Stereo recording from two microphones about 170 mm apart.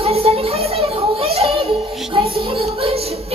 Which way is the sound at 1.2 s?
35° right (ahead or behind).